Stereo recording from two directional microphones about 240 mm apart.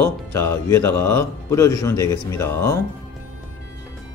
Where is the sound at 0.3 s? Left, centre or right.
Centre.